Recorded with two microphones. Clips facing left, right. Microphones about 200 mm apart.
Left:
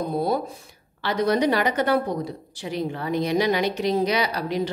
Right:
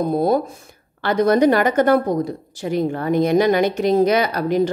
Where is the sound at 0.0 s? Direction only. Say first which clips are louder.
Right 6 dB; 45° right (ahead or behind).